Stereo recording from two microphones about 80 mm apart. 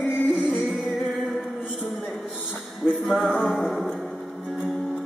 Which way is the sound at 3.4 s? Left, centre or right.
Centre.